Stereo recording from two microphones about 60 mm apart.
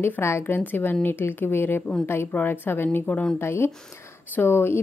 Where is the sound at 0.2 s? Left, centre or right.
Left.